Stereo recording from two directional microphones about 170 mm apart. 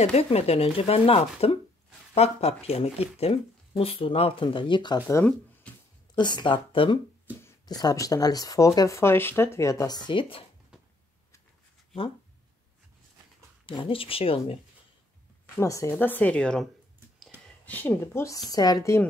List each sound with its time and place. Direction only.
0.0 s speech: 40° left (ahead or behind); by 5.2 s 20° left (ahead or behind)
5.7 s a sound: 5° left (ahead or behind)
6.1 s speech: 25° left (ahead or behind)
13.7 s speech: 30° left (ahead or behind)
15.5 s speech: 20° left (ahead or behind)
17.6 s speech: 10° left (ahead or behind)